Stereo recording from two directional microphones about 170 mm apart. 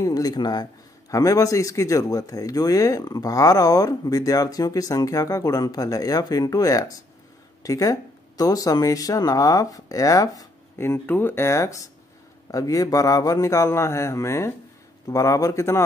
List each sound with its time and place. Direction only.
0.0 s speech: 20° left (ahead or behind)